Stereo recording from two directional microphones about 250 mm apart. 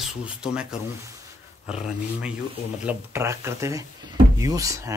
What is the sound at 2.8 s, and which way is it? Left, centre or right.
Speech, centre.